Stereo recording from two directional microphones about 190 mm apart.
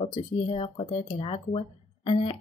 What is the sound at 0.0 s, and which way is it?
Speech, 30° left (ahead or behind).